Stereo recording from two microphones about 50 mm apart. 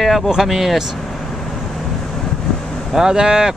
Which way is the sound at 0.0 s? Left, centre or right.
Centre.